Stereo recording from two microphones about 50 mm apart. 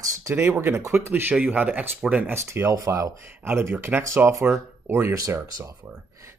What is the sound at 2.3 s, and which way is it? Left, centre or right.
Speech, right.